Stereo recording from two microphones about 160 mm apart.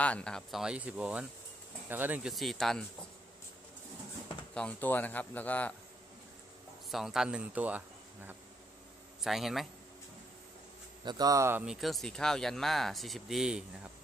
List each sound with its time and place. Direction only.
0.0 s speech: 5° left (ahead or behind)
4.6 s speech: 10° left (ahead or behind)
6.9 s speech: centre (ahead or behind)
11.1 s a man's voice: 25° right (ahead or behind)
11.6 s speech: centre (ahead or behind)